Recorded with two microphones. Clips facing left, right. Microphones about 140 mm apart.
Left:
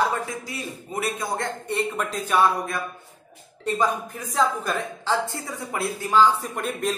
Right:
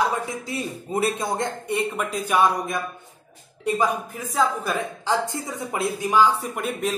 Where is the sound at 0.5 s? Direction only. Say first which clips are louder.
Right 5 dB; 25° right (ahead or behind).